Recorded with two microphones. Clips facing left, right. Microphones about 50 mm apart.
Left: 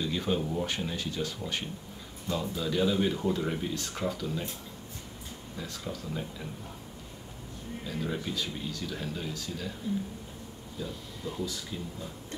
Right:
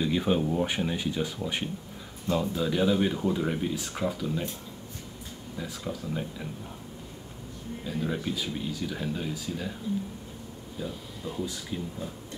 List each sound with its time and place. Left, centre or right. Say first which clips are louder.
0.0 s speech: right 4 dB; centre
5.6 s speech: right 3 dB; centre
7.8 s speech: right 3 dB; centre
10.8 s speech: right 2 dB; centre